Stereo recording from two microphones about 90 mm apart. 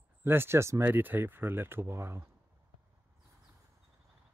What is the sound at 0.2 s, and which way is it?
Speech, 25° right (ahead or behind).